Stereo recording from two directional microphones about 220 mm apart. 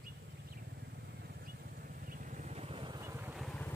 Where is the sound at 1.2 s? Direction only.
40° right (ahead or behind).